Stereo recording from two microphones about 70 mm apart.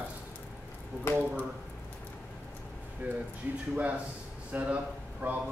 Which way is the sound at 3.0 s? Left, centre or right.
Right.